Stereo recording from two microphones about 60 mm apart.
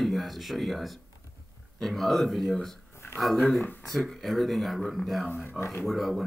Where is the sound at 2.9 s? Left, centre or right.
Left.